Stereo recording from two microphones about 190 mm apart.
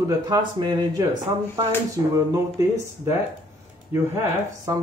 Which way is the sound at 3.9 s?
15° right (ahead or behind).